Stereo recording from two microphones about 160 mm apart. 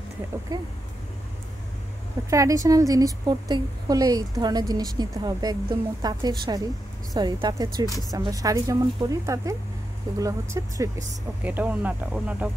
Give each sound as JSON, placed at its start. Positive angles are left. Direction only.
{"t": 2.2, "sound": "a woman's voice", "side_deg": -20}